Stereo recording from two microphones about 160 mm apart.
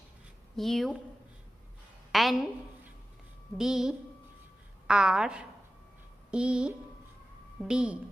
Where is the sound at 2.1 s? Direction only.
Centre (ahead or behind).